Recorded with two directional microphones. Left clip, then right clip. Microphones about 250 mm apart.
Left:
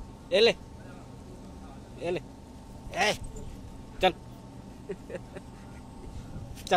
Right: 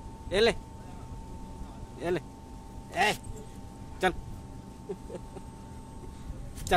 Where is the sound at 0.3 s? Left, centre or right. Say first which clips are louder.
Left 3 dB; centre.